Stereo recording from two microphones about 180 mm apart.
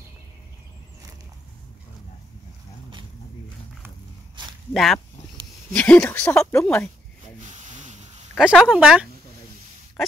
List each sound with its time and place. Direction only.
4.7 s speech: centre (ahead or behind)
7.5 s rub: 40° right (ahead or behind)
8.4 s speech: centre (ahead or behind)